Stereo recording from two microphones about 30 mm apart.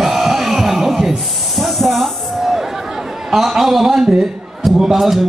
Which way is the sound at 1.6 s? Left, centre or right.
Centre.